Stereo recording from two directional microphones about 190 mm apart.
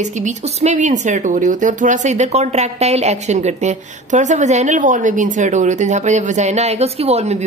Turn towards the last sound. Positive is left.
turn(degrees=-35)  # may be behind; listen again after turning